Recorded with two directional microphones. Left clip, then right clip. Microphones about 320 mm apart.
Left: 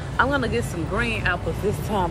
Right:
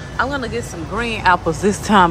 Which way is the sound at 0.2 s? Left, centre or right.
Centre.